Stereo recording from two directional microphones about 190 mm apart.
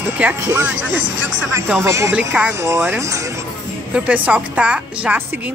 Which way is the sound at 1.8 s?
15° right (ahead or behind).